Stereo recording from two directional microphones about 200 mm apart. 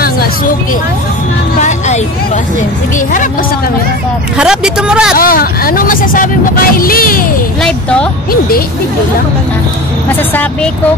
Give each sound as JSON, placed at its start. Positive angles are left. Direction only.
{"t": 4.4, "sound": "speech", "side_deg": -5}
{"t": 5.1, "sound": "speech", "side_deg": 45}
{"t": 7.6, "sound": "speech", "side_deg": 5}
{"t": 8.3, "sound": "speech", "side_deg": 45}
{"t": 10.0, "sound": "speech", "side_deg": 10}